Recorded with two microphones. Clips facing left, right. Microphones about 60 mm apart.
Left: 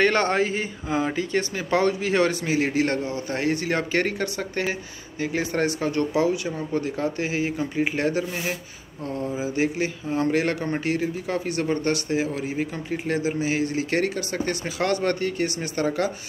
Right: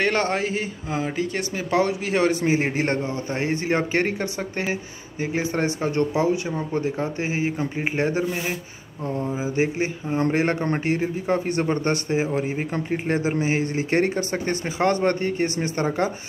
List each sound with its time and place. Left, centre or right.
0.0 s speech: centre
2.4 s speech: right